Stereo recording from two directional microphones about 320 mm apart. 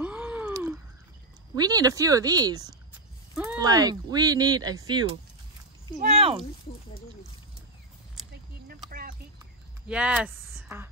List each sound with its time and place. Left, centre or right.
0.0 s a sound: centre
1.5 s speech: centre
9.8 s speech: centre